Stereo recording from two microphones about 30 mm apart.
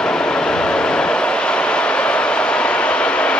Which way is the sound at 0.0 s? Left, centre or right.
Left.